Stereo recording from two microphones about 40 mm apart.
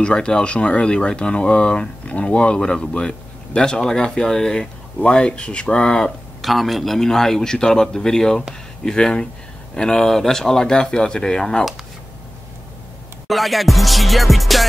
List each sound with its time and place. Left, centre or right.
0.0 s speech: left
6.4 s a man's voice: centre
13.3 s music: centre